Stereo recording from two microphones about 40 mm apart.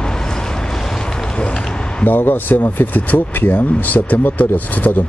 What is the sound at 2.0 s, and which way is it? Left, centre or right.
Speech, left.